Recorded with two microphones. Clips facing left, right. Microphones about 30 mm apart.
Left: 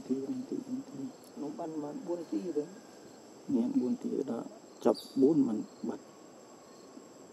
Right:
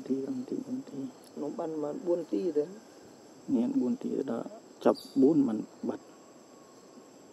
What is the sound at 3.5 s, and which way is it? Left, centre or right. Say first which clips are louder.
Speech: right 2 dB; left.